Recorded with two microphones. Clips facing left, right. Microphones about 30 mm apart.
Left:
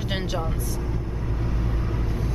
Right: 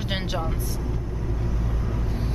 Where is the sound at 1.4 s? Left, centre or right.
Left.